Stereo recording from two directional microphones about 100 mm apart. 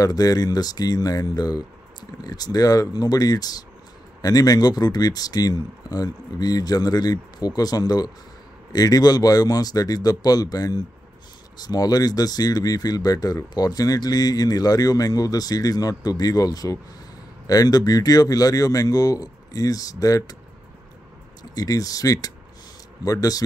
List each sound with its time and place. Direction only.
0.0 s speech: 40° left (ahead or behind)
21.5 s speech: 35° left (ahead or behind)